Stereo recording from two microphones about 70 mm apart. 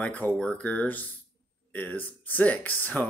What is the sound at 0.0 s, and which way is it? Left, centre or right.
Speech, left.